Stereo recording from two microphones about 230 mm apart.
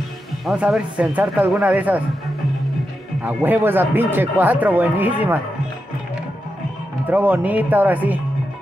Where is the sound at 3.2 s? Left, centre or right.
Centre.